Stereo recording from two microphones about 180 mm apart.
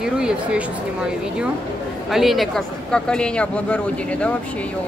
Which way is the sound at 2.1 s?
Centre (ahead or behind).